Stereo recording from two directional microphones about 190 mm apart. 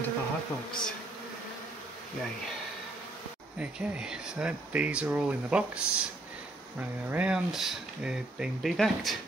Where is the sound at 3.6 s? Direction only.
5° right (ahead or behind).